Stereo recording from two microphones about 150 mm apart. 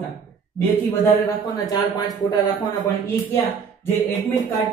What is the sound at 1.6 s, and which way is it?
Speech, 25° left (ahead or behind).